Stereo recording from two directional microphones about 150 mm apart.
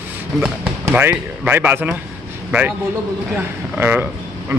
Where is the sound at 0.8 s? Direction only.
10° right (ahead or behind).